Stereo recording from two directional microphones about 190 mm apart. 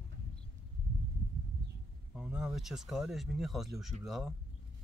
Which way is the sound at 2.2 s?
5° right (ahead or behind).